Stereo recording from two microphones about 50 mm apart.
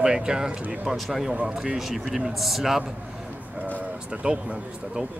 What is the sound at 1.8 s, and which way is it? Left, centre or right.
Speech, centre.